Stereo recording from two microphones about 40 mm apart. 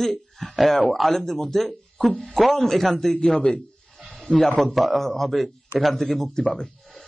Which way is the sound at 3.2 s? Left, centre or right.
Left.